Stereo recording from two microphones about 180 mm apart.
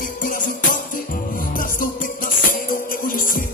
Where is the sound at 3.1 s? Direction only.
50° left (ahead or behind).